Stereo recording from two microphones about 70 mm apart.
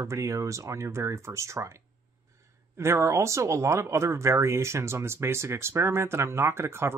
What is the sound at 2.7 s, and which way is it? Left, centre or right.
Speech, right.